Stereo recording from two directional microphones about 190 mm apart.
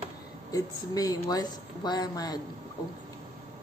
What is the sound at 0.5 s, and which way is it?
Speech, 20° left (ahead or behind).